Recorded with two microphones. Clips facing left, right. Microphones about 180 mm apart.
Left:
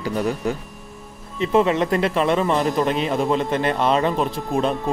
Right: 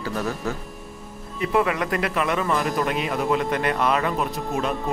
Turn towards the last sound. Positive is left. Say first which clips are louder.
# left 4 dB
turn(degrees=30)  # may be behind; listen again after turning